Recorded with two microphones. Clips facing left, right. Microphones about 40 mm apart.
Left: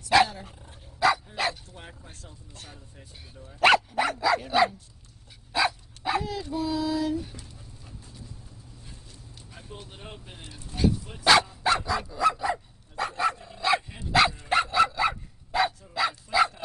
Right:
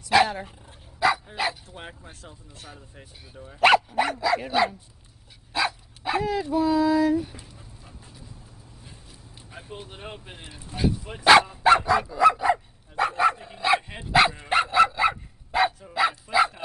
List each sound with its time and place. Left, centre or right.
0.1 s dog: centre
2.5 s a sound: centre
3.5 s dog: centre
6.4 s a sound: centre
6.8 s speech: right
7.2 s dog: centre
9.5 s speech: right
11.1 s speech: right
11.6 s dog: right
13.9 s dog: right
14.5 s dog: right